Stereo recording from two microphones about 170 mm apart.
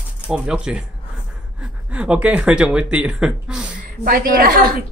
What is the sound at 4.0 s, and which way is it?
Speech, 60° right (ahead or behind).